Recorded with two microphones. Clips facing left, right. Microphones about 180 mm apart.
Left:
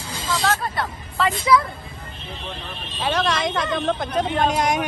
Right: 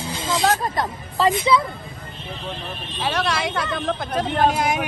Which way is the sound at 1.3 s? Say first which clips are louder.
Left 3 dB; 25° right (ahead or behind).